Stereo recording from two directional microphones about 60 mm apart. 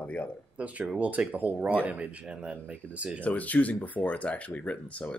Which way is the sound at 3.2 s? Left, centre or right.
Left.